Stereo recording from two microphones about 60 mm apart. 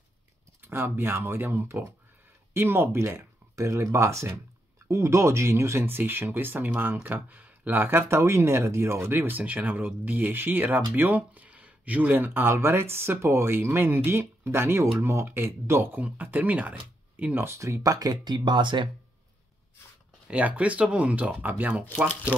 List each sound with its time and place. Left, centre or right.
0.6 s speech: right
3.5 s speech: right
9.4 s speech: right
16.0 s speech: right
17.4 s speech: right
20.2 s speech: right